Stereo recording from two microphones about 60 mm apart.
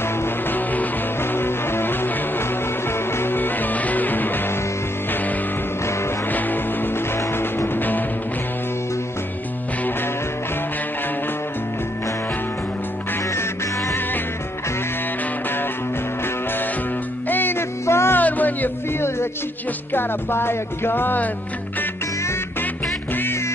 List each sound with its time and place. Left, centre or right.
0.0 s music: left
6.3 s music: left
13.3 s music: left
17.3 s music: left
18.1 s music: left
18.9 s music: left